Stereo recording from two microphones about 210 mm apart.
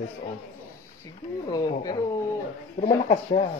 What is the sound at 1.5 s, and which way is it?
A man's voice, 20° left (ahead or behind).